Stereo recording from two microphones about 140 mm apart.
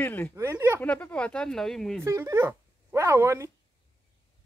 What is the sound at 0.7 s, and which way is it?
Speech, 10° left (ahead or behind).